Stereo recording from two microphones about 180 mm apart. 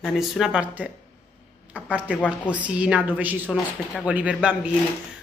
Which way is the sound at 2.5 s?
5° right (ahead or behind).